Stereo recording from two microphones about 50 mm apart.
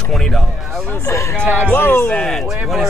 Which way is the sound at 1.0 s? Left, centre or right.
Left.